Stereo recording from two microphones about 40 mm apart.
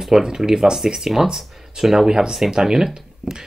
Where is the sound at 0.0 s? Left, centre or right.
Centre.